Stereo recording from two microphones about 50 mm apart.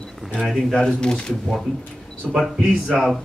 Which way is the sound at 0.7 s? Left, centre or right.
Centre.